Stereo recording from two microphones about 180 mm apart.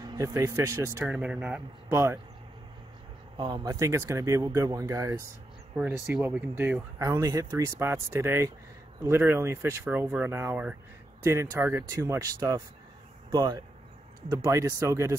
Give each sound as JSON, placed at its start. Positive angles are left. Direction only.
{"t": 0.0, "sound": "speech", "side_deg": -20}
{"t": 1.0, "sound": "speech", "side_deg": -5}
{"t": 3.3, "sound": "speech", "side_deg": -25}
{"t": 5.8, "sound": "speech", "side_deg": -5}